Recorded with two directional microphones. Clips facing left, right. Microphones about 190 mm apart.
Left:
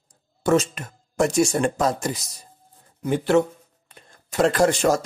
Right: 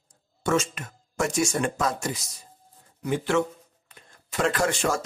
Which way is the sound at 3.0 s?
35° left (ahead or behind).